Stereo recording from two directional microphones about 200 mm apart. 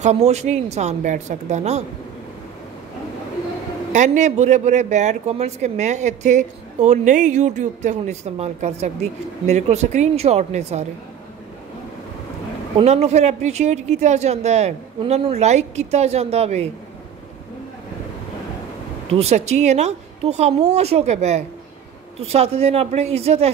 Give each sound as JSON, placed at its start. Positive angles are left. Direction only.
{"t": 0.0, "sound": "speech", "side_deg": -35}
{"t": 3.9, "sound": "speech", "side_deg": -35}
{"t": 12.7, "sound": "speech", "side_deg": -30}
{"t": 19.0, "sound": "speech", "side_deg": -30}